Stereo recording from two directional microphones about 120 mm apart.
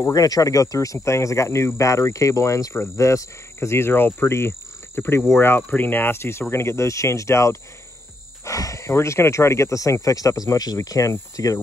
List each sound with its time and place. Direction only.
0.0 s speech: 30° left (ahead or behind)